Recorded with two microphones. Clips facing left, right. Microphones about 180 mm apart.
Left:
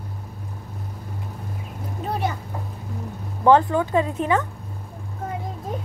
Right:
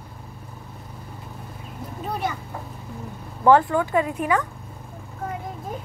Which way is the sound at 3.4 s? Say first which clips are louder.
Even; 20° left (ahead or behind).